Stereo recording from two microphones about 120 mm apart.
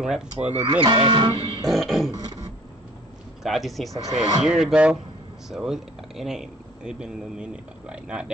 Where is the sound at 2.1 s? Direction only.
35° right (ahead or behind).